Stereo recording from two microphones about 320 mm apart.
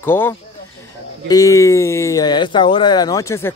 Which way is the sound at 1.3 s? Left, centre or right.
Centre.